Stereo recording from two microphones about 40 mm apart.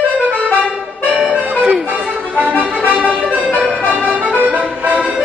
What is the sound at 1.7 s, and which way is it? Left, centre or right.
Music, right.